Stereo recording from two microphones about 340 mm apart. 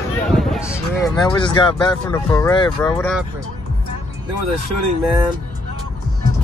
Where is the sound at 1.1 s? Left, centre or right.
Centre.